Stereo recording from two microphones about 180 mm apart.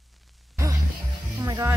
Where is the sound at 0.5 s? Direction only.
15° right (ahead or behind).